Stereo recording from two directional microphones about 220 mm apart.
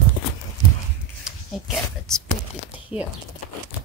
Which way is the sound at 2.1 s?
5° left (ahead or behind).